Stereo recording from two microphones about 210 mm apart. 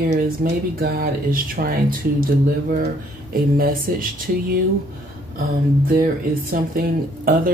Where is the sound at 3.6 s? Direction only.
45° right (ahead or behind).